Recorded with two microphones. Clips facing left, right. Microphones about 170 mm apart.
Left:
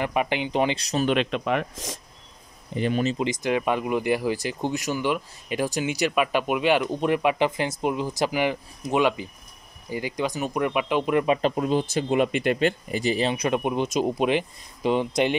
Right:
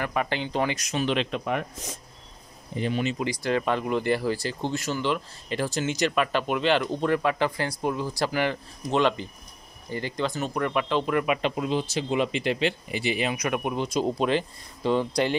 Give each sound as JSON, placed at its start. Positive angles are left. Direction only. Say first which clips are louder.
{"t": 0.0, "sound": "speech", "louder": "left 3 dB", "side_deg": 15}
{"t": 0.7, "sound": "speech", "louder": "left 3 dB", "side_deg": 35}
{"t": 1.0, "sound": "speech", "louder": "left 3 dB", "side_deg": 60}
{"t": 3.2, "sound": "speech", "louder": "left 2 dB", "side_deg": 20}
{"t": 11.2, "sound": "speech", "louder": "left 3 dB", "side_deg": 40}